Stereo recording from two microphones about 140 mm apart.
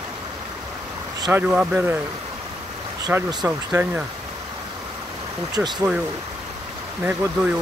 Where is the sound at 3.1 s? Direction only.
15° right (ahead or behind).